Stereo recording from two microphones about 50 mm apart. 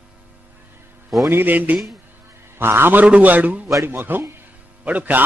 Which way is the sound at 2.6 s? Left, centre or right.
Right.